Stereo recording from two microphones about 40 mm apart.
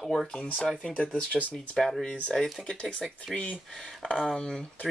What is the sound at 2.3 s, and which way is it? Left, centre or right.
Speech, centre.